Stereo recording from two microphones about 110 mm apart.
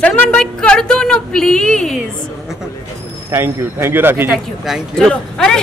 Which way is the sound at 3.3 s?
25° right (ahead or behind).